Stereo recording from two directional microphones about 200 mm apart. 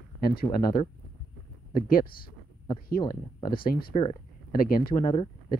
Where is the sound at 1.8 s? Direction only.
45° left (ahead or behind).